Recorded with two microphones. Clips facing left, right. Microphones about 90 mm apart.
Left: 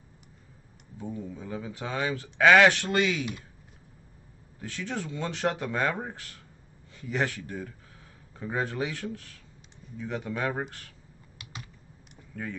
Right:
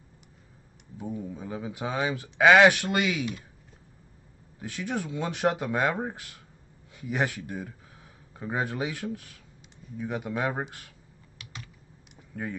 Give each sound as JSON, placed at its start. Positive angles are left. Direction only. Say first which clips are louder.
{"t": 0.9, "sound": "speech", "louder": "right 2 dB", "side_deg": -15}
{"t": 4.6, "sound": "speech", "louder": "right 2 dB", "side_deg": -10}
{"t": 12.3, "sound": "speech", "louder": "right 2 dB", "side_deg": -15}